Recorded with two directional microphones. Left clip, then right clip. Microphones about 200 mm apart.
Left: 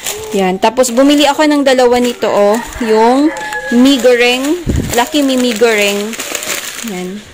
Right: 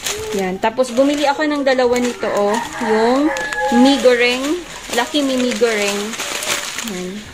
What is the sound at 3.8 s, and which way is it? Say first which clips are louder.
Speech: left 4 dB; 35° left (ahead or behind).